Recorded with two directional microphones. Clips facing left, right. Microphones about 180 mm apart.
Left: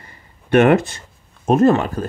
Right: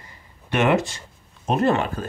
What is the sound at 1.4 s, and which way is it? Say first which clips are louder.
Speech: left 6 dB; 45° left (ahead or behind).